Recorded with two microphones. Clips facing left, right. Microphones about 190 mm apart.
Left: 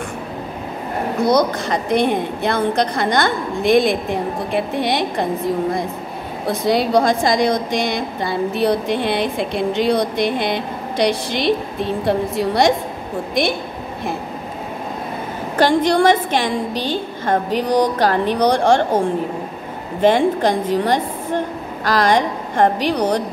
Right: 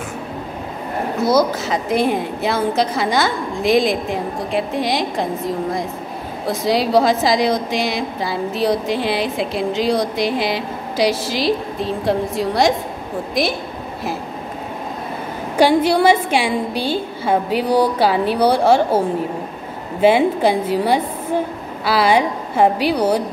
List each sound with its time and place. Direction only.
1.2 s a woman's voice: 5° right (ahead or behind)
15.5 s a woman's voice: 10° right (ahead or behind)